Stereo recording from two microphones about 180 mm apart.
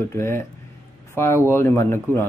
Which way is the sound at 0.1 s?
15° left (ahead or behind).